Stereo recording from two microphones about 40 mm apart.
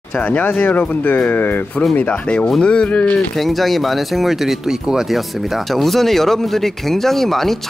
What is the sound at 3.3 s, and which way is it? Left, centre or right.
Speech, centre.